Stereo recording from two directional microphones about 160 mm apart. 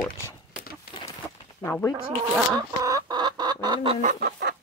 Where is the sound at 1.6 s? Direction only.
15° left (ahead or behind).